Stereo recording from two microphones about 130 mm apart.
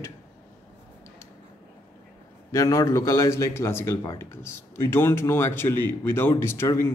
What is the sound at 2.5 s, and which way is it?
A man's voice, 25° left (ahead or behind).